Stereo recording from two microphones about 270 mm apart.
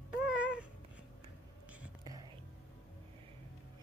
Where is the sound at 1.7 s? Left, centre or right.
Centre.